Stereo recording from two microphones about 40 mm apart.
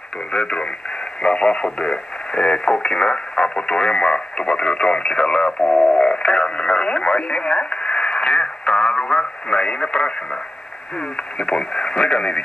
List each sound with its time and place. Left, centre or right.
0.3 s speech: left